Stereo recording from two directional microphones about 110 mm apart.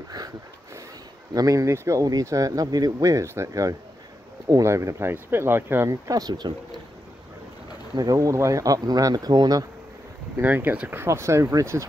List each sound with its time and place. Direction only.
1.3 s speech: 30° right (ahead or behind)
7.9 s speech: 35° right (ahead or behind)
10.3 s speech: 15° right (ahead or behind)